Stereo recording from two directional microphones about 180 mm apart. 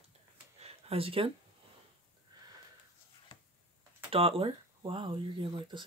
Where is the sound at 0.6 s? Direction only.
35° right (ahead or behind).